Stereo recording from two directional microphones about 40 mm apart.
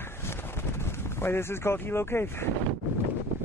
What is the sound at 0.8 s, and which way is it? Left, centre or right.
Speech, left.